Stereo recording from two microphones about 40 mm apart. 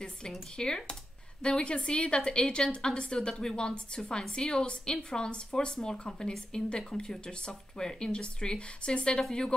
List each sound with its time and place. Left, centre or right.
0.6 s speech: centre